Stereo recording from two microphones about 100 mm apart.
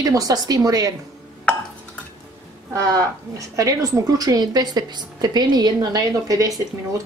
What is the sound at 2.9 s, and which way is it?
A woman's voice, 35° right (ahead or behind).